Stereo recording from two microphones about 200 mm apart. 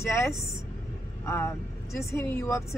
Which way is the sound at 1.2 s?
10° left (ahead or behind).